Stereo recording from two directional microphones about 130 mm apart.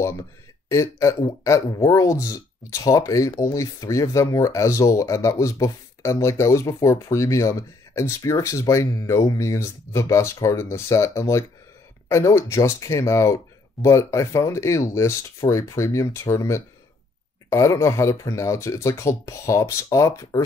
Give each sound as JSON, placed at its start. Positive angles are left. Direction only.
{"t": 0.7, "sound": "speech", "side_deg": 25}